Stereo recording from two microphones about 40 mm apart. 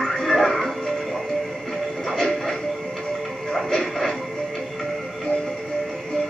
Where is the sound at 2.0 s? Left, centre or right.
Centre.